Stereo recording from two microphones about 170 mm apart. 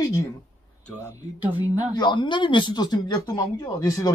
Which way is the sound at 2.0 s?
25° left (ahead or behind).